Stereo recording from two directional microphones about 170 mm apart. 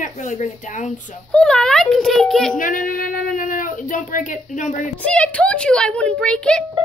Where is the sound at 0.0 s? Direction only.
45° left (ahead or behind).